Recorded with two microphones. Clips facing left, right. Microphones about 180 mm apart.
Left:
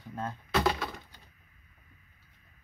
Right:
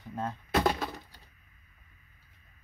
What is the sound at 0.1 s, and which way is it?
Speech, 15° right (ahead or behind).